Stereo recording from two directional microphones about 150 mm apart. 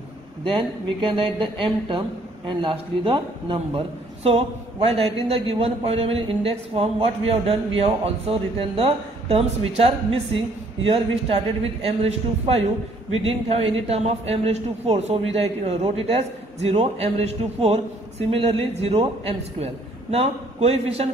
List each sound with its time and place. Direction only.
0.4 s a man's voice: 35° right (ahead or behind)